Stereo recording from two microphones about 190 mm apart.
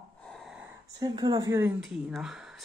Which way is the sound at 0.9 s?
20° right (ahead or behind).